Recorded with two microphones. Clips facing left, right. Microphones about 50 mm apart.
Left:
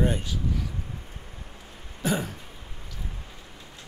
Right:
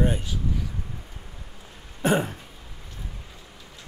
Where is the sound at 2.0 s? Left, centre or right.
Right.